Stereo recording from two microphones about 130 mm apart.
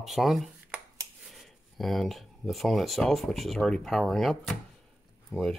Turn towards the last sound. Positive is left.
turn(degrees=0)  # may be behind; listen again after turning